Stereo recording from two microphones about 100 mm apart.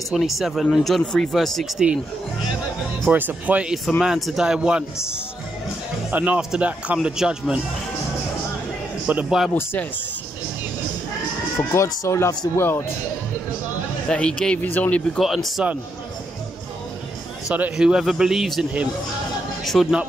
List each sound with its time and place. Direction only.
0.1 s speech: centre (ahead or behind)
3.1 s speech: 15° right (ahead or behind)
6.0 s speech: 15° right (ahead or behind)
9.0 s speech: 15° right (ahead or behind)
9.5 s speech: 20° left (ahead or behind)
11.7 s speech: 30° left (ahead or behind)
14.0 s speech: 10° left (ahead or behind)
15.1 s speech: centre (ahead or behind)
17.5 s speech: 10° right (ahead or behind)